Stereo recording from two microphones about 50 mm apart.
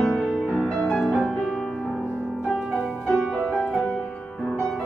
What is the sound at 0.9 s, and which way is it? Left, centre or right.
Music, centre.